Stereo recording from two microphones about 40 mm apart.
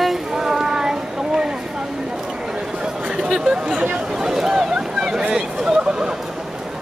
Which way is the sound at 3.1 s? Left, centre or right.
Centre.